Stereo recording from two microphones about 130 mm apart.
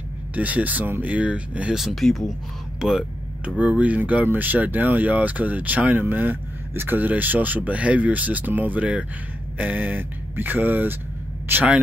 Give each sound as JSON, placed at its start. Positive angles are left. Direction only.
{"t": 0.4, "sound": "speech", "side_deg": -10}